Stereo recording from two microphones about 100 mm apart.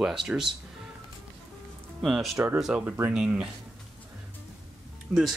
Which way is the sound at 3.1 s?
10° right (ahead or behind).